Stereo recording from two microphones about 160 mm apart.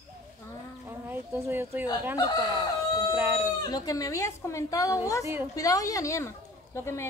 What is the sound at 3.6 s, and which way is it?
A woman's voice, 25° left (ahead or behind).